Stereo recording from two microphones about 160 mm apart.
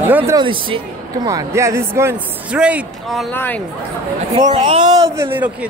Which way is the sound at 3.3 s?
10° left (ahead or behind).